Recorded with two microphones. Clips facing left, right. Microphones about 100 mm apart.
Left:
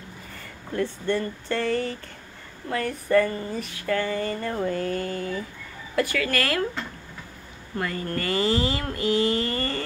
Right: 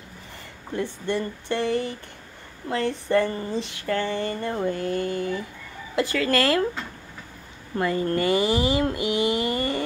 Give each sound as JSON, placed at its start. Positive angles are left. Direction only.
{"t": 0.7, "sound": "speech", "side_deg": -20}
{"t": 7.7, "sound": "speech", "side_deg": -25}